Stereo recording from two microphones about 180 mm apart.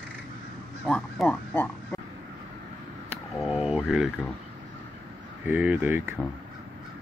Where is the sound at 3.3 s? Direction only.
5° right (ahead or behind).